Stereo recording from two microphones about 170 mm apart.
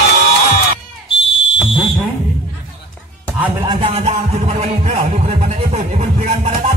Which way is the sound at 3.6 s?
35° right (ahead or behind).